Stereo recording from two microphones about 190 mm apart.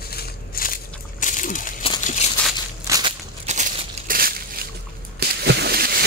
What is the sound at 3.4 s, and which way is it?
Crumpling, 40° right (ahead or behind).